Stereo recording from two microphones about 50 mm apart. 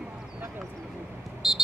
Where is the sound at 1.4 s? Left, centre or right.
Centre.